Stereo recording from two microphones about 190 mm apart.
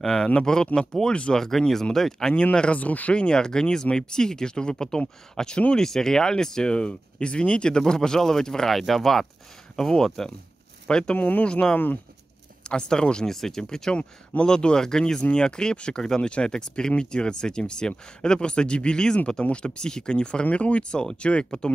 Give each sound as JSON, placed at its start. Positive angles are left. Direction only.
{"t": 0.0, "sound": "speech", "side_deg": 5}